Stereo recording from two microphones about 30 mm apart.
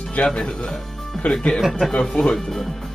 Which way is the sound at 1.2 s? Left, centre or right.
Centre.